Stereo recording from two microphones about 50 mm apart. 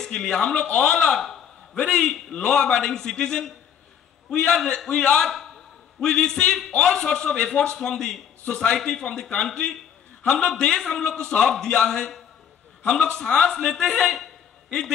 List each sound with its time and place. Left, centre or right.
0.2 s a man's voice: centre